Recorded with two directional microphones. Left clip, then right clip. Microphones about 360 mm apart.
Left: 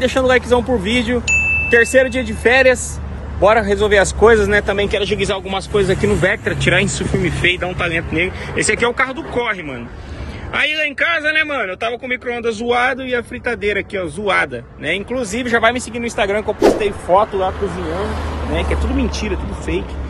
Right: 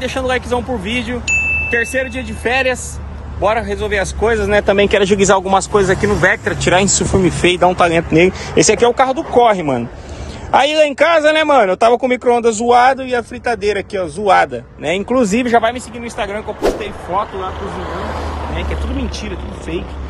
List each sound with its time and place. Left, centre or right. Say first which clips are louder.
0.0 s speech: left 4 dB; centre
4.5 s speech: right 4 dB; centre
15.1 s speech: right 8 dB; right
15.6 s speech: left 2 dB; centre
17.6 s speech: left 2 dB; right
18.5 s speech: left 3 dB; centre